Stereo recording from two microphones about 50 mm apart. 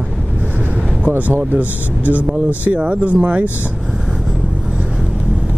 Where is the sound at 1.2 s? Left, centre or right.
Right.